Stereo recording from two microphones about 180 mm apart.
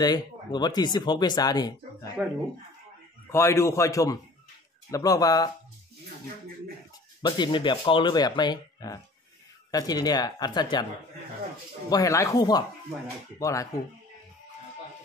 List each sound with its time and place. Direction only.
0.0 s speech: 25° left (ahead or behind)
3.3 s a man's voice: 15° left (ahead or behind)
7.2 s speech: 25° left (ahead or behind)
11.9 s a man's voice: 20° left (ahead or behind)